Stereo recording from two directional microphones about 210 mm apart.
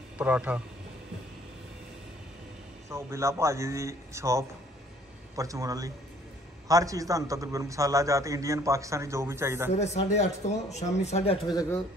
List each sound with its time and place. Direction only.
0.2 s a man's voice: 5° right (ahead or behind)
2.9 s a man's voice: 15° right (ahead or behind)
9.8 s speech: 30° left (ahead or behind)